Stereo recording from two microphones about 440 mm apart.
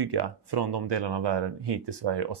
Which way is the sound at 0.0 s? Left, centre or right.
Right.